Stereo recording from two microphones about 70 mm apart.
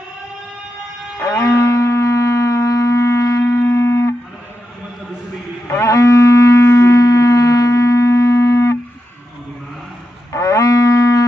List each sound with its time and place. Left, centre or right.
1.2 s music: left
5.7 s livestock: left
5.9 s wind instrument: left
10.3 s music: left